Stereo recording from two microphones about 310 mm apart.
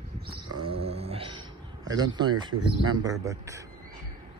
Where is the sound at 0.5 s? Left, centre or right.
Centre.